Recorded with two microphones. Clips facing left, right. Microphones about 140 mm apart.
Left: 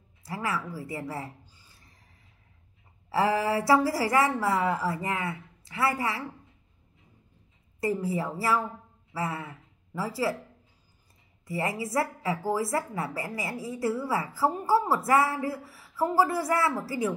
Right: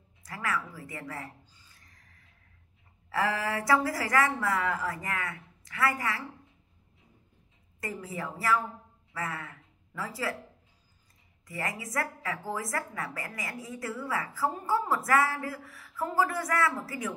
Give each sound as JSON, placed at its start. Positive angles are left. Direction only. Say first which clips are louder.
{"t": 0.2, "sound": "a sound", "louder": "left 2 dB", "side_deg": 25}
{"t": 0.7, "sound": "a woman's voice", "louder": "left 6 dB", "side_deg": 30}
{"t": 3.1, "sound": "a woman's voice", "louder": "left 5 dB", "side_deg": 25}
{"t": 7.8, "sound": "a woman's voice", "louder": "left 8 dB", "side_deg": 30}
{"t": 11.4, "sound": "a woman's voice", "louder": "left 6 dB", "side_deg": 25}